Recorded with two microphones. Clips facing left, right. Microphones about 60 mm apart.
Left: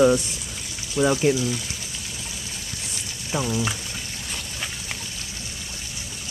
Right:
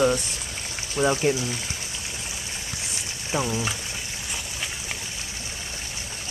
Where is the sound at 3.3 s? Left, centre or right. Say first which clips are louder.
Even; centre.